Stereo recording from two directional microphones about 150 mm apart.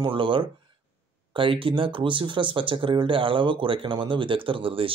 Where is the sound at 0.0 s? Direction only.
35° right (ahead or behind).